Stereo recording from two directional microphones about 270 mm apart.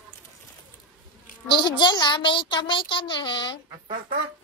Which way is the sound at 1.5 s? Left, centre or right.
Centre.